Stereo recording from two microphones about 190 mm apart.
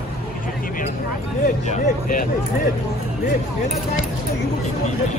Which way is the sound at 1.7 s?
45° left (ahead or behind).